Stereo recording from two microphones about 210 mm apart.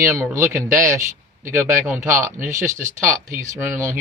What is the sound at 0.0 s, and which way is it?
A man's voice, 15° right (ahead or behind).